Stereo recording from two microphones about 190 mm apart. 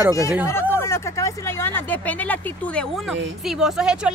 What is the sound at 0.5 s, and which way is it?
Speech, 15° left (ahead or behind).